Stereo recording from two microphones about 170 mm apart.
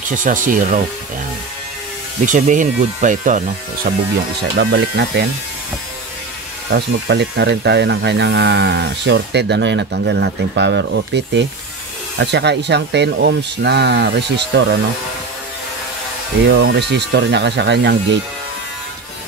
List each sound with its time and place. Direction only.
0.1 s speech: 50° right (ahead or behind)
2.2 s speech: 50° right (ahead or behind)
4.4 s speech: 75° right (ahead or behind)
6.7 s speech: 90° right
16.4 s speech: 85° right